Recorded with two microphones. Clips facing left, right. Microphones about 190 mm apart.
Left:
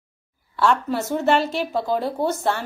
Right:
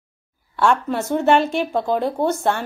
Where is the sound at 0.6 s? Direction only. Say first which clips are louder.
Right 2 dB; 50° right (ahead or behind).